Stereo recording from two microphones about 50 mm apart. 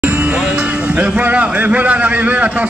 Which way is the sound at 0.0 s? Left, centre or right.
Right.